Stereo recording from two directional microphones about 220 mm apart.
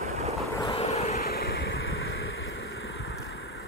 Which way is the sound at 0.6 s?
25° left (ahead or behind).